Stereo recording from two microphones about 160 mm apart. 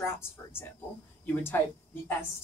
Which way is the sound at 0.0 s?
15° left (ahead or behind).